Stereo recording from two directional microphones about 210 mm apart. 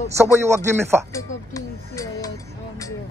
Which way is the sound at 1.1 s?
15° left (ahead or behind).